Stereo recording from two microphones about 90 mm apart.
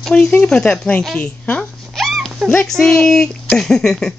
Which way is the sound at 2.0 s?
Centre (ahead or behind).